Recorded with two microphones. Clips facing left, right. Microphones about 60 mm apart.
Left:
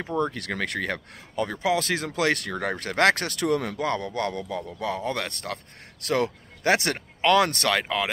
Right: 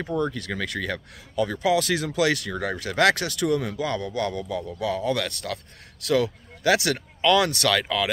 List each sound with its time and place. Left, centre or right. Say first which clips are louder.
0.0 s speech: even; centre
0.3 s speech: even; left